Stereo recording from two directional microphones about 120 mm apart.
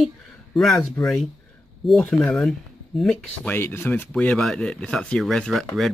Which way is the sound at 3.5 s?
20° left (ahead or behind).